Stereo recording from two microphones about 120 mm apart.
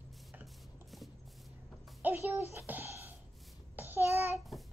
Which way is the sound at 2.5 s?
15° right (ahead or behind).